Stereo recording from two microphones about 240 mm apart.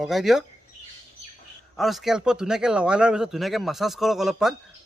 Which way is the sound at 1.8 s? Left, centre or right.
Centre.